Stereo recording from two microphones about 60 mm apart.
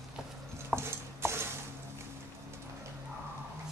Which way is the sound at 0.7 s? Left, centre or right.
Right.